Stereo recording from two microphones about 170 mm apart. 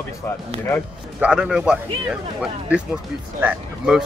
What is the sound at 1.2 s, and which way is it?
Speech, 5° right (ahead or behind).